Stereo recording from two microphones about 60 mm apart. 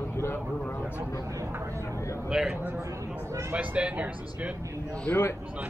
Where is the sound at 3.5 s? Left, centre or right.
Right.